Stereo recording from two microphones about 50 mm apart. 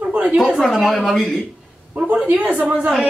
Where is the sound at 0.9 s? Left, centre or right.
Centre.